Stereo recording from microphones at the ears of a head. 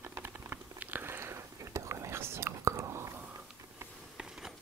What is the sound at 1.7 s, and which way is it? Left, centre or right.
Whispering, right.